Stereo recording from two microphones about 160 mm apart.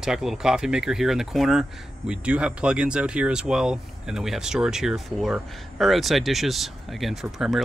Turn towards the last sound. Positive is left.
turn(degrees=0)  # may be behind; listen again after turning